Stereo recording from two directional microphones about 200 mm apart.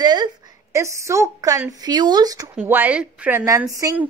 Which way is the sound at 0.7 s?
15° right (ahead or behind).